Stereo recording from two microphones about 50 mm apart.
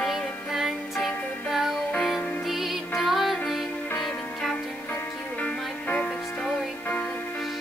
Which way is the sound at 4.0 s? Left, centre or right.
Centre.